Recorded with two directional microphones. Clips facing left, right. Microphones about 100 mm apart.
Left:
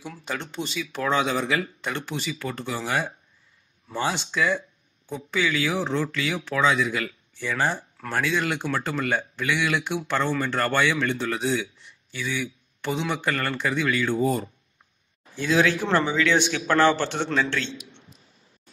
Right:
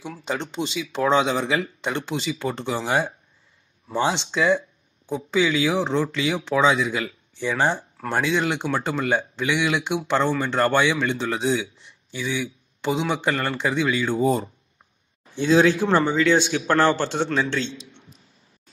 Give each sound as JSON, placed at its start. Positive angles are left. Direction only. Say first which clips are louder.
{"t": 0.0, "sound": "a man's voice", "louder": "right 4 dB", "side_deg": -20}